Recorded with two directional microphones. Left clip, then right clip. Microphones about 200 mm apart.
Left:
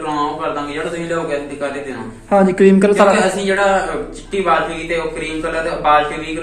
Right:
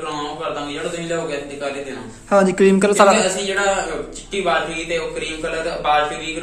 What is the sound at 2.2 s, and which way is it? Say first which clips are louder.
Speech: left 2 dB; 15° right (ahead or behind).